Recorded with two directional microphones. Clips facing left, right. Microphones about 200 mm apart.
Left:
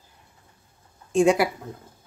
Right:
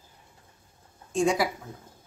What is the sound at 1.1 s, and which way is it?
Speech, 65° left (ahead or behind).